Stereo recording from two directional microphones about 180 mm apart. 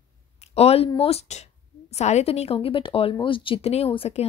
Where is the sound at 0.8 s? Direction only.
35° left (ahead or behind).